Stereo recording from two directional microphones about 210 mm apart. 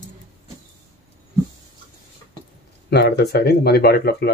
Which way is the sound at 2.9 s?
50° left (ahead or behind).